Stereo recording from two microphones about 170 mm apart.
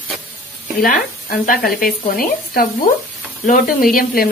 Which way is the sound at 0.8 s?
55° left (ahead or behind).